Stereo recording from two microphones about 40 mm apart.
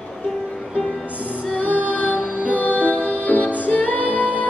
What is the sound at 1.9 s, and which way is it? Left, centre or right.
Music, left.